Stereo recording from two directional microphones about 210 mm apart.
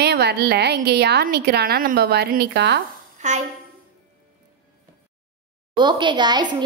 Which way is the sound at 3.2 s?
35° right (ahead or behind).